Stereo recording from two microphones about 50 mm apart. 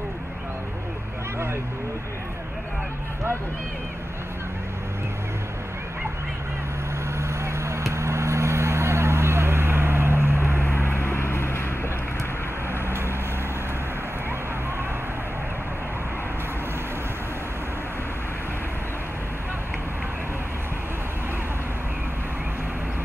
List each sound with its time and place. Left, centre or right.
7.2 s vehicle: right
10.6 s vehicle: left